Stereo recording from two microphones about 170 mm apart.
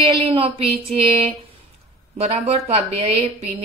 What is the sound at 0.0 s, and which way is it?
Speech, 30° right (ahead or behind).